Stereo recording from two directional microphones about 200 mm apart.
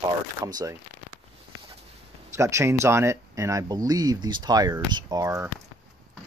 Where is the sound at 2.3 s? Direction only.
15° right (ahead or behind).